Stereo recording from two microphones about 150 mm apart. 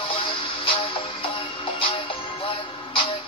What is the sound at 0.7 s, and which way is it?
Music, 35° left (ahead or behind).